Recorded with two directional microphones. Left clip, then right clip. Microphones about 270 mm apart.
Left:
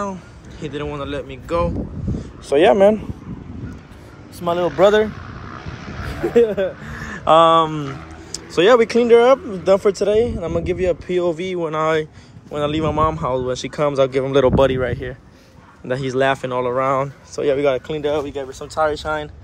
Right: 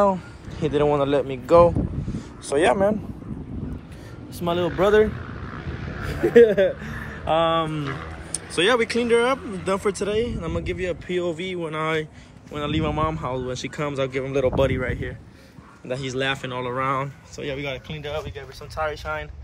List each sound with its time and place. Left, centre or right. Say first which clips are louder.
0.0 s speech: right 7 dB; centre
2.5 s speech: left 7 dB; left
4.5 s speech: left 5 dB; centre
4.7 s speech: left 4 dB; left
5.1 s vehicle: left 2 dB; centre
7.2 s speech: left 9 dB; left
18.5 s speech: left 8 dB; centre